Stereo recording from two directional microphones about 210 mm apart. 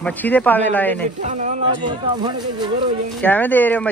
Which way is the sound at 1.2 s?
35° right (ahead or behind).